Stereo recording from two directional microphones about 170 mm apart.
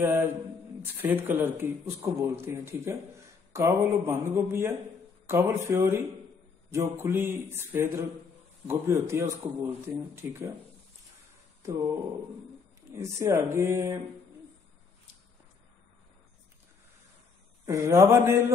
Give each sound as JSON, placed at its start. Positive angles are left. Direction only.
{"t": 0.9, "sound": "speech", "side_deg": -15}
{"t": 11.6, "sound": "speech", "side_deg": -15}
{"t": 17.6, "sound": "speech", "side_deg": -15}